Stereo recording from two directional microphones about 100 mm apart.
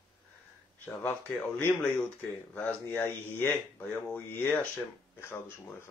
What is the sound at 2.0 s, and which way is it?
Speech, 15° left (ahead or behind).